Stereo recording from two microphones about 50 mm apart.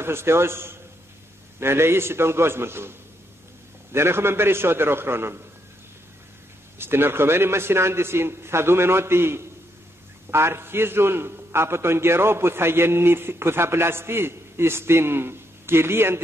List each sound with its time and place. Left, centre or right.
0.0 s a man's voice: right
6.8 s a man's voice: right